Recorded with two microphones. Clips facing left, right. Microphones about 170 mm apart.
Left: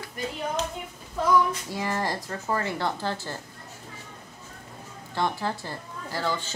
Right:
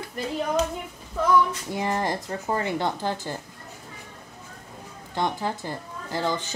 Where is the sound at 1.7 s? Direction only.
20° right (ahead or behind).